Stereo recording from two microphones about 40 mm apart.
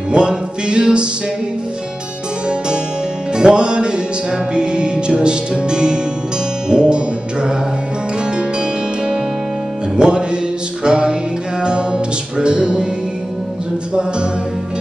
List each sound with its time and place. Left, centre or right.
0.1 s music: right
3.3 s music: right
8.4 s music: centre